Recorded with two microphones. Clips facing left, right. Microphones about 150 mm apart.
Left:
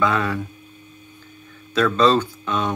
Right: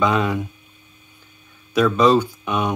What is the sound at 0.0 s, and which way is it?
Speech, 15° right (ahead or behind).